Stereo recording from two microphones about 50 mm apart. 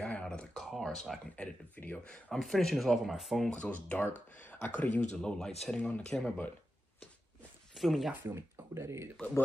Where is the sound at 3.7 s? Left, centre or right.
Left.